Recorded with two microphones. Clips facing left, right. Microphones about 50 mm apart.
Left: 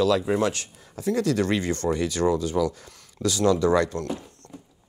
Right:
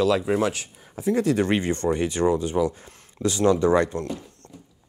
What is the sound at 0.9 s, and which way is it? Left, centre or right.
Speech, right.